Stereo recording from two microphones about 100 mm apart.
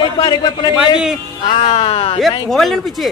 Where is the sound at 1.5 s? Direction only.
85° left; by 2.2 s 70° left (ahead or behind).